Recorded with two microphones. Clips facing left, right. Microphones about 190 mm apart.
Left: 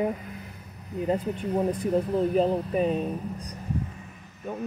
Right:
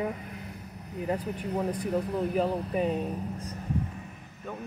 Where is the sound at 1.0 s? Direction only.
25° left (ahead or behind).